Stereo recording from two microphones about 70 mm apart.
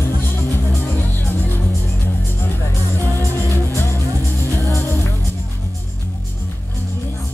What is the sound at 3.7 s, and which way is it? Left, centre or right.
Music, left.